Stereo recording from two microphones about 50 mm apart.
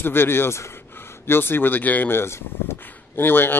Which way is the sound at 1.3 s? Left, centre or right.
Left.